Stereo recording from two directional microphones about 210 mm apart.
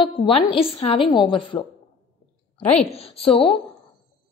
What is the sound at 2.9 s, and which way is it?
Speech, 25° left (ahead or behind).